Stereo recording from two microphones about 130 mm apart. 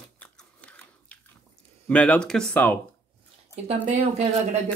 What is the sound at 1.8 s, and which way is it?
Speech, 10° left (ahead or behind).